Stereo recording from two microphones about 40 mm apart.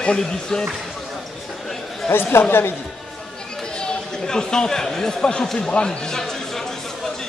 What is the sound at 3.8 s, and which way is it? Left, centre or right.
Speech, centre.